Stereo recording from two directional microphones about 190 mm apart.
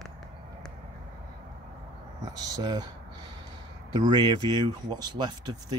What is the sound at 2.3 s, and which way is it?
Speech, 20° right (ahead or behind).